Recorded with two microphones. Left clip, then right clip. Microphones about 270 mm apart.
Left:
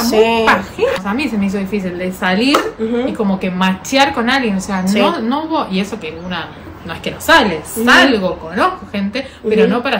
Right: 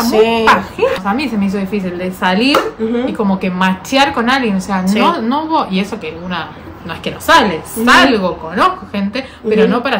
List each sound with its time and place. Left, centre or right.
0.0 s speech: centre
0.5 s a woman's voice: centre